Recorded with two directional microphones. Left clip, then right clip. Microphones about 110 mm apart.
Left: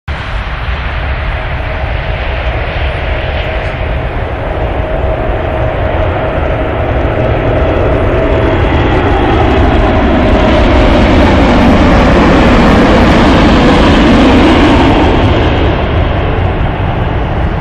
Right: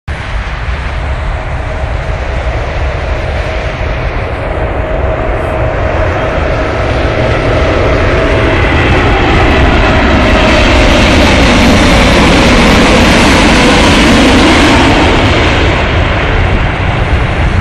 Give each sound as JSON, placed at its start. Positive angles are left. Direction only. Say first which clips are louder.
{"t": 8.6, "sound": "vehicle", "louder": "right 2 dB", "side_deg": -20}